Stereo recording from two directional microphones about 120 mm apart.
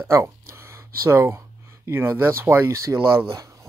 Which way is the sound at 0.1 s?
25° right (ahead or behind).